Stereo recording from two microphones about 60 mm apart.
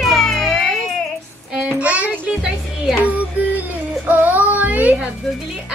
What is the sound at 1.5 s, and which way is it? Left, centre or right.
Child singing, right.